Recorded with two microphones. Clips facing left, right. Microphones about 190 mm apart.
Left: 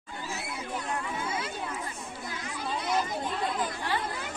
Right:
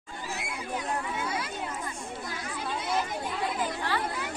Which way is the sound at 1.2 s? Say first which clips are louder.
Right 1 dB; 25° left (ahead or behind).